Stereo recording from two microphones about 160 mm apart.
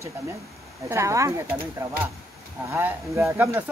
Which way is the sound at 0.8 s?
20° right (ahead or behind).